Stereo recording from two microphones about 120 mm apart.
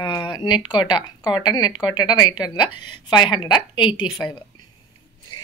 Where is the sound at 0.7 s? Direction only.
35° left (ahead or behind).